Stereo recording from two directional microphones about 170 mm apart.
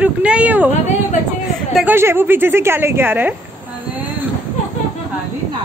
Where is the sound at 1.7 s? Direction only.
10° right (ahead or behind).